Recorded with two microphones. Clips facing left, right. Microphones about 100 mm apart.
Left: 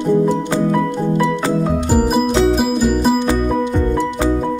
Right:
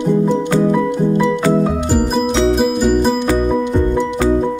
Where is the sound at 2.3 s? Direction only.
Centre (ahead or behind).